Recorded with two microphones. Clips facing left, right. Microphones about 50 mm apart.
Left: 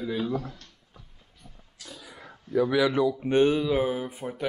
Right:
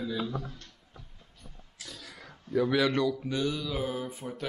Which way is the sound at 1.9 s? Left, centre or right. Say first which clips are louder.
Left 3 dB; centre.